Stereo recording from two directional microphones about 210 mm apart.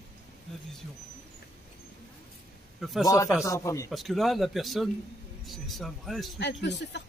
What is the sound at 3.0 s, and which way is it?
Speech, 15° left (ahead or behind).